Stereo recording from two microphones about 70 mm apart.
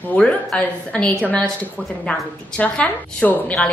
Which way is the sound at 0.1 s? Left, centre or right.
Centre.